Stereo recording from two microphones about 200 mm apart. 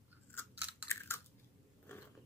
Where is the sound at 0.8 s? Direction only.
10° left (ahead or behind).